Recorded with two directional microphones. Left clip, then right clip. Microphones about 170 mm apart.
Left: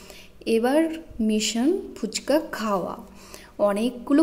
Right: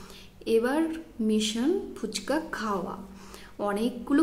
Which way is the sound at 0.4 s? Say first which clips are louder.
Left 4 dB; 20° left (ahead or behind).